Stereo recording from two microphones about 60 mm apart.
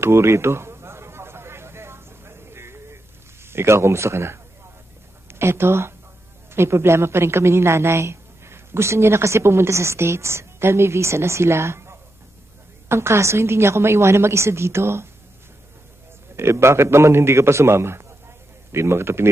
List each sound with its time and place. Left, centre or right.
0.0 s a sound: right
3.4 s a woman's voice: right
16.3 s a woman's voice: right